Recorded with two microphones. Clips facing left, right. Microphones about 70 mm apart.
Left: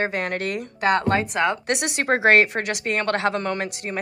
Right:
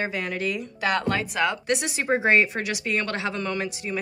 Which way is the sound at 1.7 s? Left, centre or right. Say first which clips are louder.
Left 2 dB; left.